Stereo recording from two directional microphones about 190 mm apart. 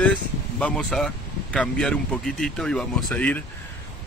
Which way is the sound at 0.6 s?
5° left (ahead or behind).